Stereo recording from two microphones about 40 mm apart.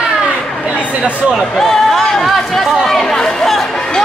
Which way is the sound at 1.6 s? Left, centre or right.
Centre.